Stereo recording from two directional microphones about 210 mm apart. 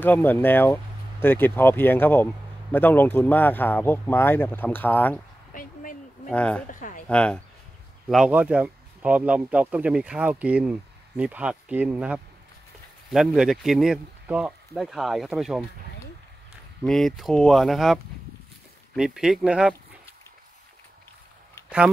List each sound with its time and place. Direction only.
0.0 s speech: 10° left (ahead or behind)
5.5 s a sound: 40° left (ahead or behind)
6.3 s speech: 5° left (ahead or behind)
6.7 s a sound: 40° left (ahead or behind)
7.1 s speech: 5° left (ahead or behind)
16.8 s speech: centre (ahead or behind)